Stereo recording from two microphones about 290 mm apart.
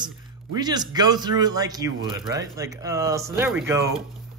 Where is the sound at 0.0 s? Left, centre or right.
Centre.